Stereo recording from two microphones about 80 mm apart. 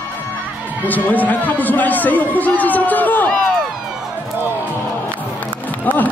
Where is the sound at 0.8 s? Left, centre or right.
Left.